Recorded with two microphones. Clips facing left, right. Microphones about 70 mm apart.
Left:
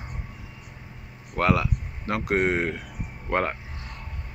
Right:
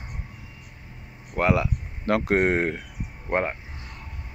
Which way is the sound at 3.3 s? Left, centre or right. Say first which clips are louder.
Even; centre.